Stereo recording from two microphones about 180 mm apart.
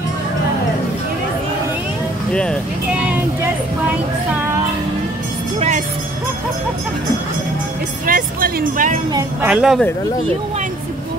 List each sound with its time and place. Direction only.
8.1 s speech: 50° right (ahead or behind)
9.5 s speech: centre (ahead or behind)